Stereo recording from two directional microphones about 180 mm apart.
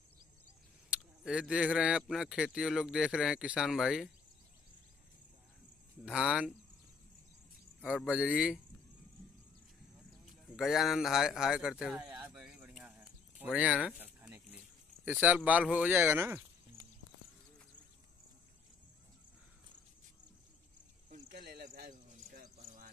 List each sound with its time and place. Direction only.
0.8 s speech: 5° right (ahead or behind)
6.0 s speech: 5° right (ahead or behind)
8.0 s speech: 5° right (ahead or behind)
10.5 s speech: centre (ahead or behind)
21.3 s a sound: 55° right (ahead or behind)